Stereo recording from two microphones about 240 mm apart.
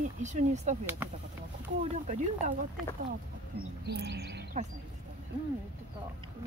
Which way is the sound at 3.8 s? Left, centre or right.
Right.